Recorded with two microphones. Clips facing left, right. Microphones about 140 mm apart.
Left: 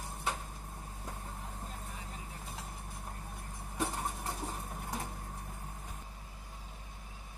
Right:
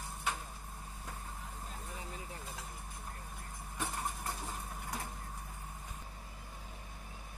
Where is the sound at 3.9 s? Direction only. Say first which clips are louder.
Left 1 dB; 20° left (ahead or behind).